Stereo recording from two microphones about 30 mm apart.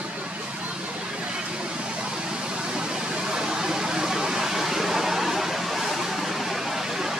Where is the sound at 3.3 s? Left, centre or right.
Right.